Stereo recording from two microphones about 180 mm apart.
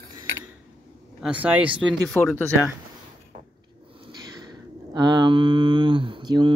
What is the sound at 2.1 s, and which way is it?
Speech, 10° left (ahead or behind).